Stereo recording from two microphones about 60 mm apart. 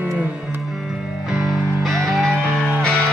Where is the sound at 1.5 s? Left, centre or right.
Centre.